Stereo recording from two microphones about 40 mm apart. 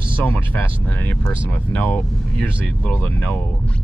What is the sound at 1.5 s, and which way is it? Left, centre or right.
Speech, left.